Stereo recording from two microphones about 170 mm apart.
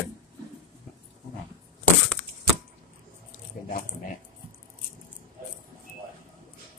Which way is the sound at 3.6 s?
50° left (ahead or behind).